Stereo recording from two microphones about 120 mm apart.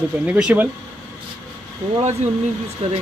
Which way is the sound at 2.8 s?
60° right (ahead or behind).